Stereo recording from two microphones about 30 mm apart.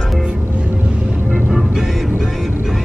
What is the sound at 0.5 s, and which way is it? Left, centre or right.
Music, right.